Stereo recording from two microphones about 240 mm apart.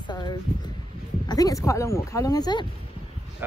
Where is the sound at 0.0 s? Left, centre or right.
Centre.